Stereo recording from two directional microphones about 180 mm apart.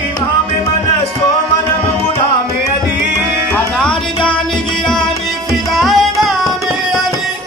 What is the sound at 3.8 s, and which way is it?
Tabla, 5° left (ahead or behind).